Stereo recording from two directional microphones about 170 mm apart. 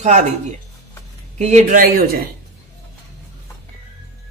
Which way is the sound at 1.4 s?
45° right (ahead or behind).